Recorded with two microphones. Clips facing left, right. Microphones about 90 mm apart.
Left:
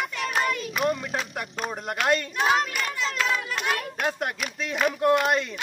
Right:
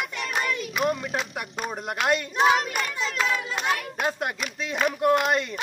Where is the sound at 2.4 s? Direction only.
30° right (ahead or behind).